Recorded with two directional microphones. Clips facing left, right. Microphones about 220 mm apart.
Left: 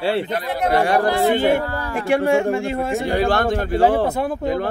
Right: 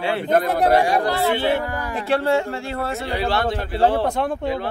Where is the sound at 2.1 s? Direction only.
15° left (ahead or behind).